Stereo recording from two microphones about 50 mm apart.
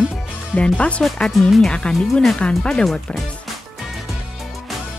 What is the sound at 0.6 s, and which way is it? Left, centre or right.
Speech, left.